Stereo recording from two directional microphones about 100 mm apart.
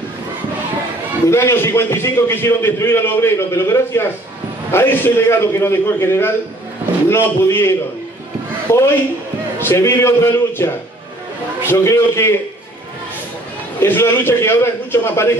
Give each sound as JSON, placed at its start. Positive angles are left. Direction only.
{"t": 1.3, "sound": "a man's voice", "side_deg": 25}
{"t": 9.6, "sound": "a man's voice", "side_deg": 25}
{"t": 13.7, "sound": "a man's voice", "side_deg": 25}